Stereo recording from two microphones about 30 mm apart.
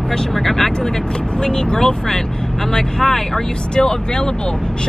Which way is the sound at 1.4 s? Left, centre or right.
Left.